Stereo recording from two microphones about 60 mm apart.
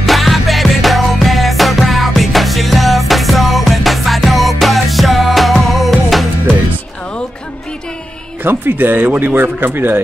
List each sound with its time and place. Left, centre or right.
0.0 s music: centre
8.5 s speech: right